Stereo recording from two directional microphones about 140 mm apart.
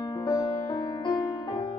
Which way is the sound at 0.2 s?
30° left (ahead or behind).